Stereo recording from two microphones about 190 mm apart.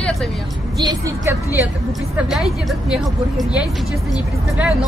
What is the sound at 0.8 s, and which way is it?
Speech, 15° right (ahead or behind).